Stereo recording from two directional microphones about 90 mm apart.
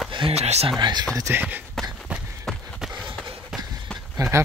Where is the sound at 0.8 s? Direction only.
55° right (ahead or behind).